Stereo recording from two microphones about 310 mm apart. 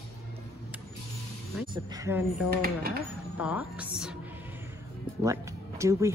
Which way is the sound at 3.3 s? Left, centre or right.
Centre.